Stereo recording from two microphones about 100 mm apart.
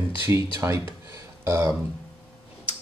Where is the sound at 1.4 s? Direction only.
30° right (ahead or behind).